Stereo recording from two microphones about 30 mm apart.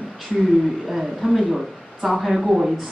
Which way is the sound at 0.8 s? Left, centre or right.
Centre.